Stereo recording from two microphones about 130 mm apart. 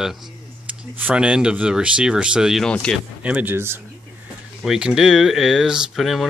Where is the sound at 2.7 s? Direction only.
5° left (ahead or behind).